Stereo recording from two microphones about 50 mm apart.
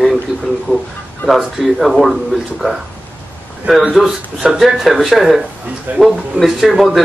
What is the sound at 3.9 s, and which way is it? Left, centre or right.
A man's voice, centre.